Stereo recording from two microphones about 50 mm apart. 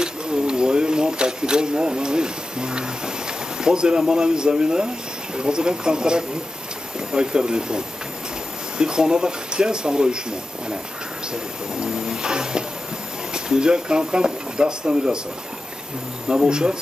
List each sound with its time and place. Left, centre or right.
0.0 s a sound: centre
3.6 s speech: centre
11.7 s speech: centre
16.3 s speech: centre